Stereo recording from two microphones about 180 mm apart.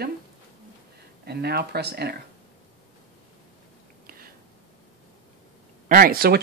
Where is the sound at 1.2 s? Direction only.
65° right (ahead or behind).